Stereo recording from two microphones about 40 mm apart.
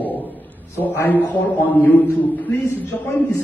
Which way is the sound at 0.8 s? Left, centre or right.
Left.